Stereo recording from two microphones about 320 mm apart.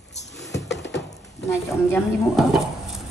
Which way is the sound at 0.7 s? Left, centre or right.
Left.